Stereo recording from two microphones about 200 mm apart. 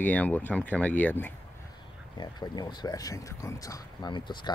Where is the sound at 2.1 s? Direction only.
20° left (ahead or behind).